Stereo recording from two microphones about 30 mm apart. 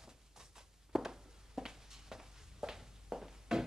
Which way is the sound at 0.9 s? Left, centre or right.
Centre.